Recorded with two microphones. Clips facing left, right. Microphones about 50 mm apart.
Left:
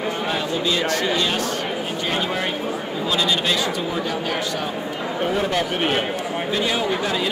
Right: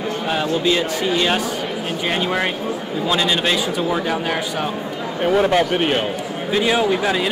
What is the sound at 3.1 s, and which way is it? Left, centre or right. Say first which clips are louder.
Speech: right 3 dB; right.